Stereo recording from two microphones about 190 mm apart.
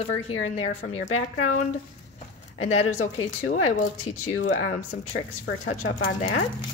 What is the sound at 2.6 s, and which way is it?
Speech, 40° left (ahead or behind).